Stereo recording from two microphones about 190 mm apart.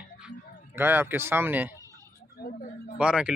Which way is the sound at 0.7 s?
10° right (ahead or behind).